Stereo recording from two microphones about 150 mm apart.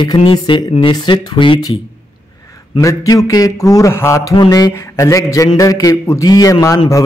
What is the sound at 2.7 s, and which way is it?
A man's voice, 25° left (ahead or behind).